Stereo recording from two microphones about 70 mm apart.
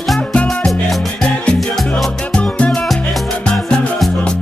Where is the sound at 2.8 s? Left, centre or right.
Centre.